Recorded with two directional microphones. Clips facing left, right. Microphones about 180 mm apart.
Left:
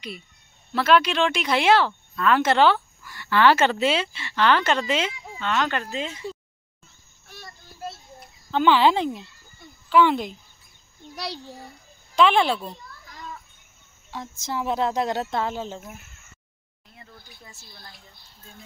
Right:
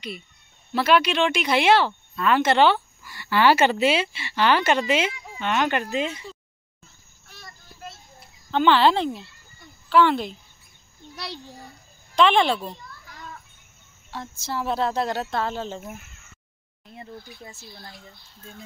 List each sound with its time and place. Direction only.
0.7 s speech: 5° right (ahead or behind)
8.5 s speech: 5° left (ahead or behind)
12.2 s speech: 5° left (ahead or behind)
14.1 s speech: 20° left (ahead or behind)